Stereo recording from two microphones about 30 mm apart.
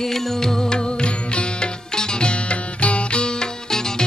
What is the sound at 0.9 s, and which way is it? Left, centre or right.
Music, left.